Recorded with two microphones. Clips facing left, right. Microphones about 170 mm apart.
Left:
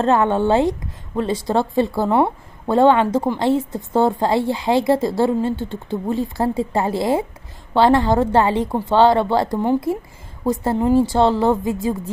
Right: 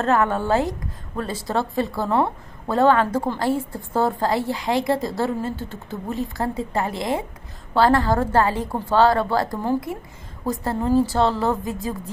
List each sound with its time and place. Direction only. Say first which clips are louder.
0.0 s a woman's voice: left 4 dB; 25° left (ahead or behind)